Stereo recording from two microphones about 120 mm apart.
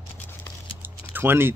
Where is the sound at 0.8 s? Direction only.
15° right (ahead or behind).